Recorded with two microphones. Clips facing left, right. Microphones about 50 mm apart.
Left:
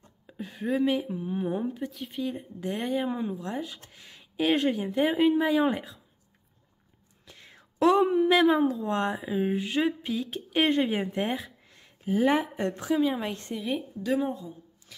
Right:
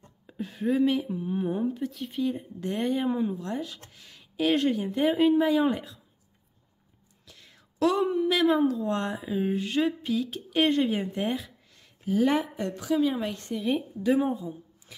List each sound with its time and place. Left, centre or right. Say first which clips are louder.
0.3 s a woman's voice: right 2 dB; centre
7.2 s whispering: left 3 dB; left
8.0 s a woman's voice: left 3 dB; centre
8.5 s speech: even; centre
12.5 s a woman's voice: left 2 dB; left
12.9 s a woman's voice: right 1 dB; centre
13.6 s a woman's voice: right 4 dB; centre
14.0 s speech: right 4 dB; centre